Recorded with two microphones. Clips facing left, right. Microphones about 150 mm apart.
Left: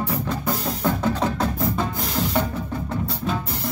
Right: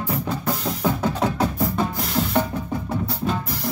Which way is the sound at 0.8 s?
15° right (ahead or behind).